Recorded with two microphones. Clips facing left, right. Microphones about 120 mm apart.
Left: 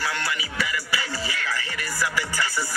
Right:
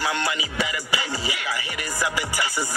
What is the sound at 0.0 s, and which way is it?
Music, 20° right (ahead or behind).